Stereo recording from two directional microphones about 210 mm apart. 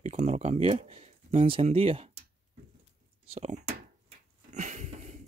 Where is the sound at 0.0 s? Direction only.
30° right (ahead or behind).